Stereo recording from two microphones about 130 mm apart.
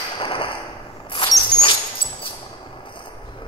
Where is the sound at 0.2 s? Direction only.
45° left (ahead or behind).